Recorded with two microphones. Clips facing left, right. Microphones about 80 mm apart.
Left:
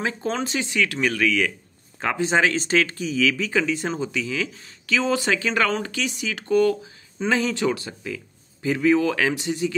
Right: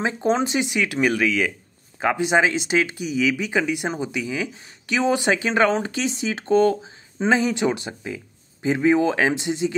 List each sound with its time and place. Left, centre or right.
0.0 s speech: right